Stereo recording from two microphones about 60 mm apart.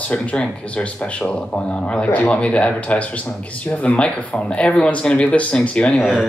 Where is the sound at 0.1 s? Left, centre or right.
Left.